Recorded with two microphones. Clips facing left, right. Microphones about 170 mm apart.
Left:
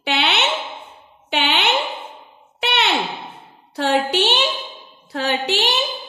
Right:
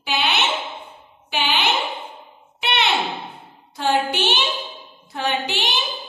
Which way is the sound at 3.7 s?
65° left (ahead or behind).